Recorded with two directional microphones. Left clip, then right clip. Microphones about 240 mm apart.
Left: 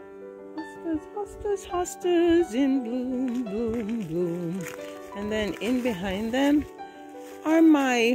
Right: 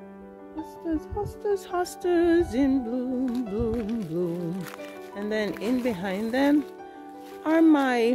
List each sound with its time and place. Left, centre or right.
0.9 s music: centre
4.2 s speech: left
7.4 s music: centre